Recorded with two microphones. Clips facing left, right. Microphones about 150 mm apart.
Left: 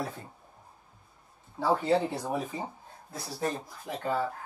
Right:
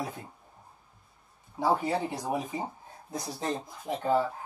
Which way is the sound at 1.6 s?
10° right (ahead or behind).